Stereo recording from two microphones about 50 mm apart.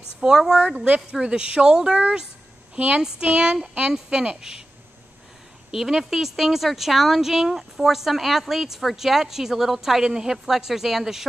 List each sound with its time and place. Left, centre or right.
0.2 s speech: centre
0.7 s speech: right
5.7 s a woman's voice: centre